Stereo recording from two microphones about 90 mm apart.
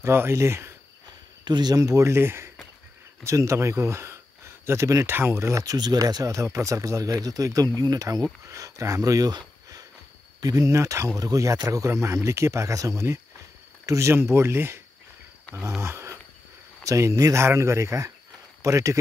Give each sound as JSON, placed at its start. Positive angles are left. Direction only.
{"t": 0.0, "sound": "speech", "side_deg": -30}
{"t": 1.4, "sound": "speech", "side_deg": -55}
{"t": 10.4, "sound": "speech", "side_deg": -40}
{"t": 15.8, "sound": "wild animals", "side_deg": -30}
{"t": 16.8, "sound": "a man's voice", "side_deg": -35}